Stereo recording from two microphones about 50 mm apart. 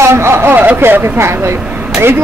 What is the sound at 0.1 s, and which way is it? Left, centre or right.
Speech, right.